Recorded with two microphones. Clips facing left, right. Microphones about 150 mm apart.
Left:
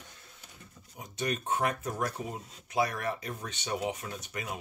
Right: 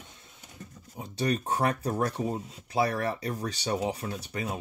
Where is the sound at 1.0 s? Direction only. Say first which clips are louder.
Right 5 dB; 35° right (ahead or behind).